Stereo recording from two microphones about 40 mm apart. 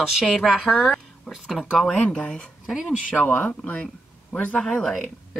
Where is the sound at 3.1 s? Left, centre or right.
Left.